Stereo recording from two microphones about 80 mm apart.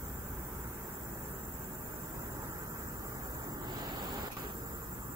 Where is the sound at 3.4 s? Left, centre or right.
Right.